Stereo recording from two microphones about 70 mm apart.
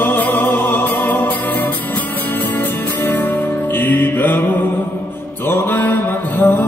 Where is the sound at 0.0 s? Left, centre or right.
Left.